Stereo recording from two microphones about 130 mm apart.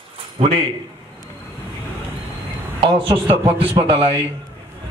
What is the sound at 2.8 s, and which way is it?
A man's voice, 45° right (ahead or behind).